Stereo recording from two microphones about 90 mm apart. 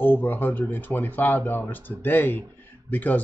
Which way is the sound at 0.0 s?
20° left (ahead or behind).